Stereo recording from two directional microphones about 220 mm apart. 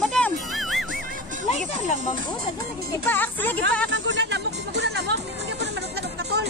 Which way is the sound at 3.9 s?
55° right (ahead or behind).